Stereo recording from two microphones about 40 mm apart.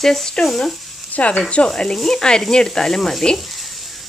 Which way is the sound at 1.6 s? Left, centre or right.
Centre.